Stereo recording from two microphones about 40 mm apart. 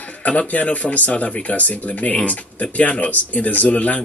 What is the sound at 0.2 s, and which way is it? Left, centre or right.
Speech, left.